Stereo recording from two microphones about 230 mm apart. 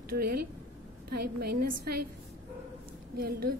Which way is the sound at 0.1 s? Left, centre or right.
Right.